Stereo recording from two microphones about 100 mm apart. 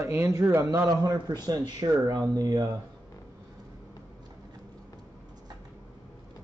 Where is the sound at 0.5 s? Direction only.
25° right (ahead or behind).